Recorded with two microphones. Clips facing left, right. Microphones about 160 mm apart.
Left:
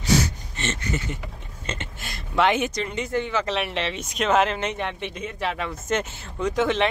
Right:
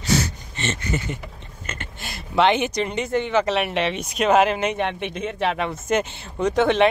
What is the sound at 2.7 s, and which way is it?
Speech, 20° right (ahead or behind).